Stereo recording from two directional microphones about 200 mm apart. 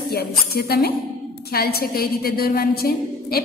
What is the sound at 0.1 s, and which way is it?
A woman's voice, 50° left (ahead or behind).